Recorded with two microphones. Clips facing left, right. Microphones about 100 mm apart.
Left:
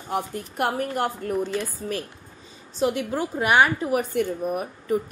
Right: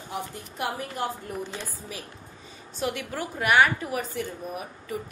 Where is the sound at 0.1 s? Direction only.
60° left (ahead or behind).